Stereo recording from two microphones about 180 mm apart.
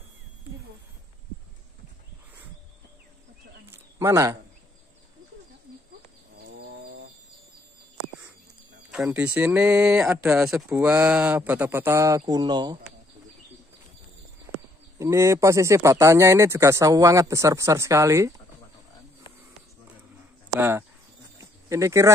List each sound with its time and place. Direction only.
3.7 s a sound: 15° right (ahead or behind)
8.9 s speech: 5° right (ahead or behind); by 12.7 s 25° right (ahead or behind)
15.0 s speech: 15° right (ahead or behind)
20.5 s cricket: 10° right (ahead or behind)